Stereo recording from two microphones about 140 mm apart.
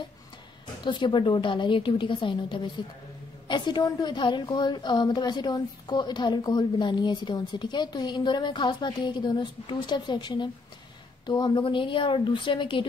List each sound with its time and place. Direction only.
0.8 s a woman's voice: 35° left (ahead or behind)